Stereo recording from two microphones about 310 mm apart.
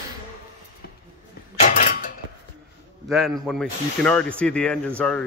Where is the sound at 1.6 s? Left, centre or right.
Left.